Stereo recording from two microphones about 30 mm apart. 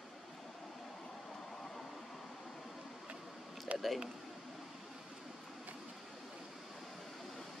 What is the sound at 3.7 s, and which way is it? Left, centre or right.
Speech, right.